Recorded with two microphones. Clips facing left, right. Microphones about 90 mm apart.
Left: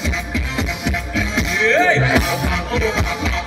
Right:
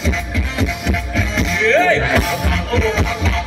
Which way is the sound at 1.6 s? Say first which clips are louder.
Right 1 dB; 20° left (ahead or behind).